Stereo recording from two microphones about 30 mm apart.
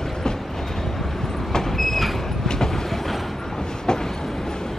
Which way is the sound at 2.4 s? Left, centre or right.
Centre.